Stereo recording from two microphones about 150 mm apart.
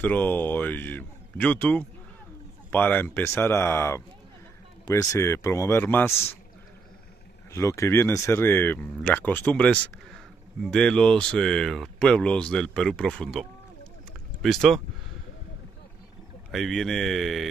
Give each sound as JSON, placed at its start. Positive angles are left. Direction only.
{"t": 0.0, "sound": "a man's voice", "side_deg": 10}
{"t": 7.5, "sound": "speech", "side_deg": 20}
{"t": 16.5, "sound": "speech", "side_deg": 0}